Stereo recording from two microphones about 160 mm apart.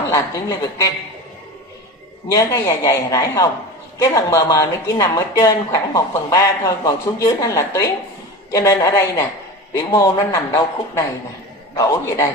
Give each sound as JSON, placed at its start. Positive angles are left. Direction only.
{"t": 0.1, "sound": "speech", "side_deg": 20}
{"t": 2.3, "sound": "speech", "side_deg": 20}